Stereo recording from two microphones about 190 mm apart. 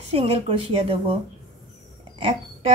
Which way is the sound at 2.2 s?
30° right (ahead or behind).